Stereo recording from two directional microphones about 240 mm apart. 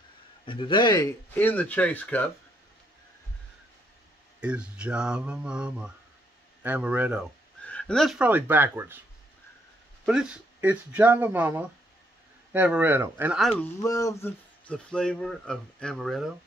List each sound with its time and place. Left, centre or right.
0.5 s speech: left
1.3 s speech: centre
4.4 s speech: centre
7.6 s speech: centre
10.0 s speech: centre
13.7 s speech: centre